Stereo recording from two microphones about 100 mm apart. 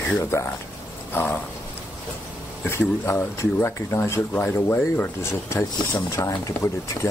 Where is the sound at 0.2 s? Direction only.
25° left (ahead or behind).